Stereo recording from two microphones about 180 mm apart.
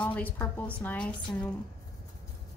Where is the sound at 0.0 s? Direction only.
10° left (ahead or behind).